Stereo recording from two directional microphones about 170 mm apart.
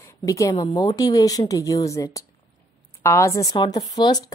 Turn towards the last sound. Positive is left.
turn(degrees=25)  # may be behind; listen again after turning